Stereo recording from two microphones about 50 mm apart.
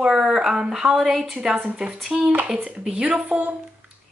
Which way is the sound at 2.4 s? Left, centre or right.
Centre.